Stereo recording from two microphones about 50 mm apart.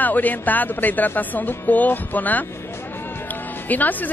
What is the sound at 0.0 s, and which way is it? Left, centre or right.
A woman's voice, left.